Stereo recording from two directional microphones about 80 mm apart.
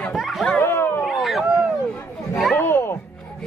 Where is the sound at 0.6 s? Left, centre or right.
Left.